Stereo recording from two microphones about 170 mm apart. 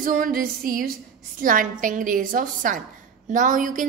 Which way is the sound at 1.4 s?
55° right (ahead or behind).